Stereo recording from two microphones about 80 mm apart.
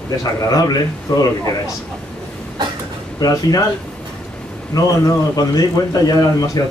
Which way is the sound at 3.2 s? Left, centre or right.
Left.